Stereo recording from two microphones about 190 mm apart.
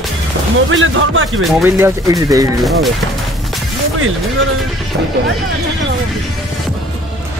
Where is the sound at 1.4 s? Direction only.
Centre (ahead or behind).